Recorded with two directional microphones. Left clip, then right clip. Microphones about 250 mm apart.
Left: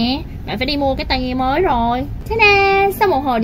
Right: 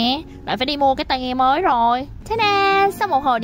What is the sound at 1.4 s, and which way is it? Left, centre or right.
A woman's voice, right.